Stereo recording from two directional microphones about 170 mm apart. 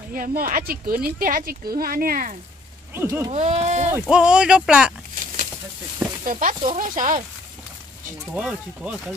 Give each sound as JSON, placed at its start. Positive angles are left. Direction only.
{"t": 0.1, "sound": "speech", "side_deg": -55}
{"t": 2.9, "sound": "speech", "side_deg": -15}
{"t": 3.3, "sound": "speech", "side_deg": -40}
{"t": 4.1, "sound": "speech", "side_deg": -5}
{"t": 5.1, "sound": "a sound", "side_deg": -50}
{"t": 6.2, "sound": "speech", "side_deg": -50}
{"t": 8.4, "sound": "speech", "side_deg": 0}